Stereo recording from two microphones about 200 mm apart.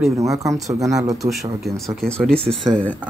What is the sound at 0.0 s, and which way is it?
Speech, 15° right (ahead or behind).